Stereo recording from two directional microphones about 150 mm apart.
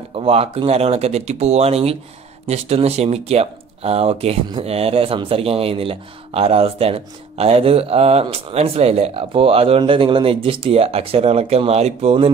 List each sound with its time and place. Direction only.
0.1 s speech: 40° right (ahead or behind)